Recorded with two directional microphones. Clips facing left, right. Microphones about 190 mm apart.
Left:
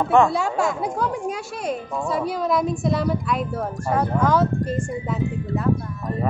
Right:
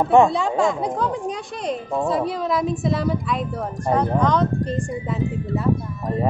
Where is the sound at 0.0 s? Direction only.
20° right (ahead or behind).